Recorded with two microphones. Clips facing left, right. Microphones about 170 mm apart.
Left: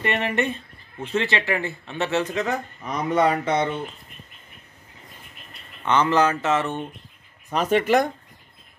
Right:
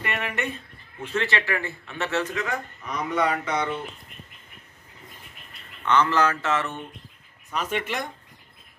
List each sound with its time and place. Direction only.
0.0 s a man's voice: 25° left (ahead or behind)
2.4 s speech: 30° left (ahead or behind)
5.9 s a man's voice: 20° left (ahead or behind)
7.5 s speech: 45° left (ahead or behind)